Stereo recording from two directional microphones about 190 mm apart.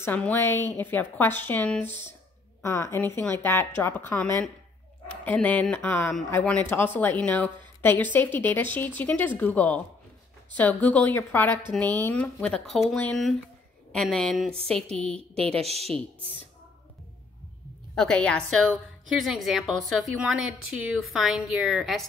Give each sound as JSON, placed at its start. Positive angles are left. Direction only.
{"t": 0.0, "sound": "a woman's voice", "side_deg": 10}
{"t": 14.5, "sound": "a woman's voice", "side_deg": -30}
{"t": 17.9, "sound": "a woman's voice", "side_deg": 5}